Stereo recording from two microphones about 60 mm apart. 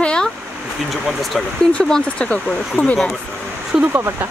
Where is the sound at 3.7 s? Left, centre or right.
Centre.